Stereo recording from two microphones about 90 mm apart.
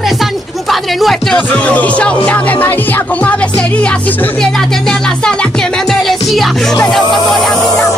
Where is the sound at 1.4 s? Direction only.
15° left (ahead or behind).